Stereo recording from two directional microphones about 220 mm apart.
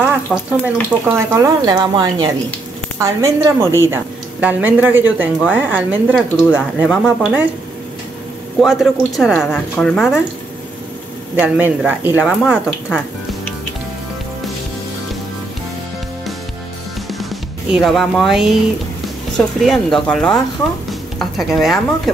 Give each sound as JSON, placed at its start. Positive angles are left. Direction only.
{"t": 0.3, "sound": "speech", "side_deg": 0}
{"t": 1.1, "sound": "speech", "side_deg": -10}
{"t": 8.5, "sound": "speech", "side_deg": 0}
{"t": 11.3, "sound": "speech", "side_deg": -5}
{"t": 17.7, "sound": "speech", "side_deg": 0}